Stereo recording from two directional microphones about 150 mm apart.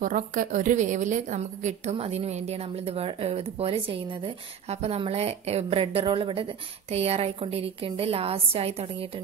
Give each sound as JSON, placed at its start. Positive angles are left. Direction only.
{"t": 0.0, "sound": "a woman's voice", "side_deg": -65}